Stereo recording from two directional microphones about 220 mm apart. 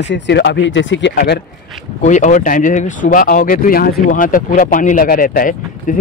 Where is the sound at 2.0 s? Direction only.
35° left (ahead or behind).